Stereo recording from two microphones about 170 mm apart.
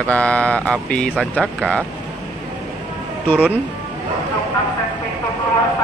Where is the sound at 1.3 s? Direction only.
10° right (ahead or behind).